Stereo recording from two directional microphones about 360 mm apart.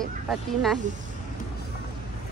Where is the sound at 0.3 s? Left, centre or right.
Centre.